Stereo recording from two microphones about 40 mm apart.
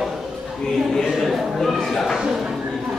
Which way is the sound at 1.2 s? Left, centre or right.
Centre.